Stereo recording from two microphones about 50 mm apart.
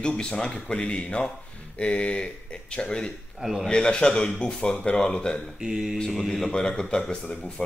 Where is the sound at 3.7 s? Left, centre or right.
Centre.